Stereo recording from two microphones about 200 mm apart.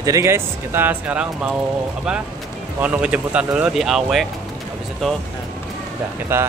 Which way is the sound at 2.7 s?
5° right (ahead or behind).